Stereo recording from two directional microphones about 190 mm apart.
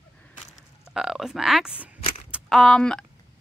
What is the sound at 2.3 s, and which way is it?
Speech, centre (ahead or behind).